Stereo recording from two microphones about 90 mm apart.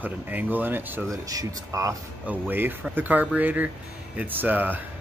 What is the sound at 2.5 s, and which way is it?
Speech, 25° right (ahead or behind).